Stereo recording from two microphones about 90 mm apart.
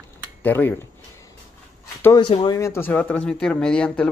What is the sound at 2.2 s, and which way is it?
Speech, 60° left (ahead or behind).